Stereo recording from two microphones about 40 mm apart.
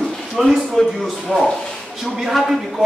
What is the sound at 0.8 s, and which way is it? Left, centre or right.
Speech, centre.